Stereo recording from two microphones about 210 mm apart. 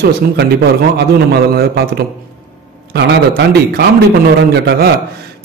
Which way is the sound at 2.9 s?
50° right (ahead or behind).